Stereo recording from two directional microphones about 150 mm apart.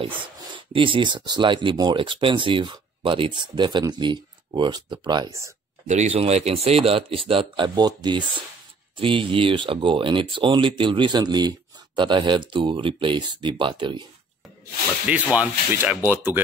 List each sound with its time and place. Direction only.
0.7 s speech: 35° right (ahead or behind)
5.9 s speech: 50° right (ahead or behind); by 14.0 s 30° right (ahead or behind)
15.3 s speech: 10° right (ahead or behind)